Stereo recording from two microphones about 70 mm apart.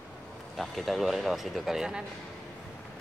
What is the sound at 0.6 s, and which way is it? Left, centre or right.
Speech, centre.